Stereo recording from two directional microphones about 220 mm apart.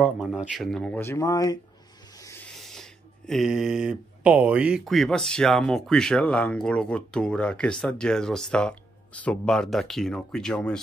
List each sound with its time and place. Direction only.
0.0 s speech: 5° right (ahead or behind)